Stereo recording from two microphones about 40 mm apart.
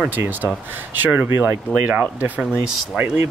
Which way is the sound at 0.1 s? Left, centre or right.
Right.